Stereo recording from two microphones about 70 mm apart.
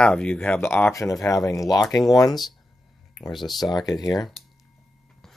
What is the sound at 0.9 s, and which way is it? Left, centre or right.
Speech, left.